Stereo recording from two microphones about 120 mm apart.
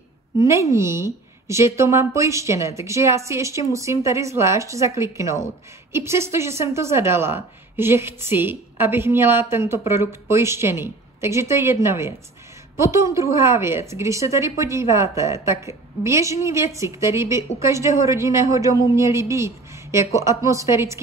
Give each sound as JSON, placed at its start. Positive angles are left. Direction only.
{"t": 0.4, "sound": "a woman's voice", "side_deg": -25}